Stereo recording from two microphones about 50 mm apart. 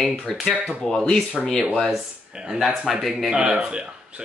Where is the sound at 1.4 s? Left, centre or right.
Centre.